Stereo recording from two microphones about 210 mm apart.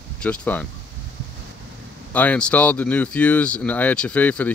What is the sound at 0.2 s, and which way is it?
Speech, 5° left (ahead or behind).